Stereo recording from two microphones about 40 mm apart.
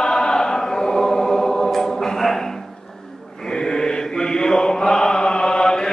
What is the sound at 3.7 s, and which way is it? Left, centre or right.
Mantra, centre.